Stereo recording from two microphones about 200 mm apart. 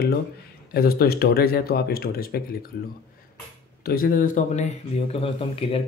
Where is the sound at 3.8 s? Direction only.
45° left (ahead or behind).